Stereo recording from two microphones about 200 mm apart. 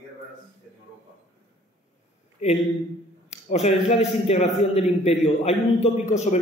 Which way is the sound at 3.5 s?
30° left (ahead or behind).